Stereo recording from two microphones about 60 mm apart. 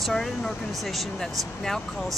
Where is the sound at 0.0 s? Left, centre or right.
Centre.